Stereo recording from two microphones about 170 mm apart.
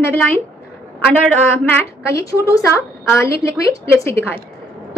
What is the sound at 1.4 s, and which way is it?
A woman's voice, 15° left (ahead or behind).